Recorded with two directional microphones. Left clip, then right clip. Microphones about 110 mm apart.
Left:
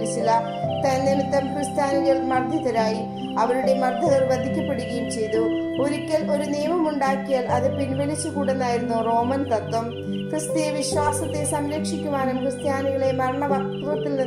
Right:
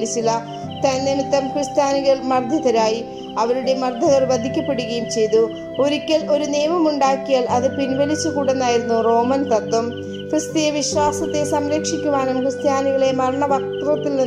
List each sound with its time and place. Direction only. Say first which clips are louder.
1.1 s a woman's voice: right 3 dB; 20° right (ahead or behind)